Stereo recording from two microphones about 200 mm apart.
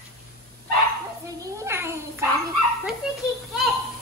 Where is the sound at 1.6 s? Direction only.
10° right (ahead or behind).